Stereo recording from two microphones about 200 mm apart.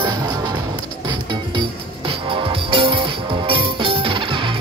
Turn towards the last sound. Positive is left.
turn(degrees=-25)  # may be behind; listen again after turning